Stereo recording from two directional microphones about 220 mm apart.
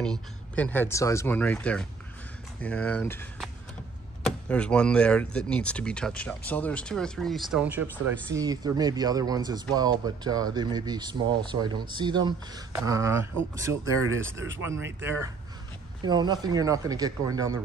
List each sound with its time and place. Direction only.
0.0 s speech: 5° left (ahead or behind)
8.4 s speech: 15° right (ahead or behind)
14.1 s speech: 60° right (ahead or behind)
14.6 s speech: 10° right (ahead or behind)